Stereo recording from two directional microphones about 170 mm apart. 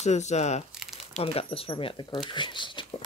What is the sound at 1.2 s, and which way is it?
Speech, 35° left (ahead or behind).